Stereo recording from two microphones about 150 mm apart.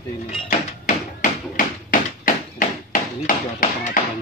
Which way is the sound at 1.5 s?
65° left (ahead or behind).